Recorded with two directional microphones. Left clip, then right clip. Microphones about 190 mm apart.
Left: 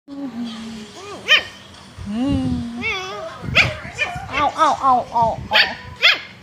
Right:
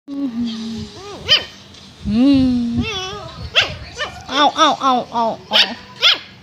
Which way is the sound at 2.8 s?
15° right (ahead or behind).